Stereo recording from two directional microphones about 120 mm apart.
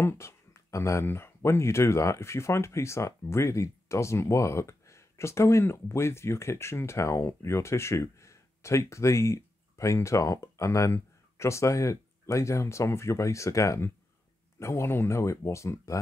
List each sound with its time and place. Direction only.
0.0 s speech: 20° left (ahead or behind)